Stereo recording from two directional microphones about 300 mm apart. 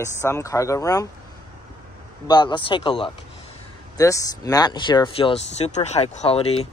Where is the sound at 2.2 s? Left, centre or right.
Centre.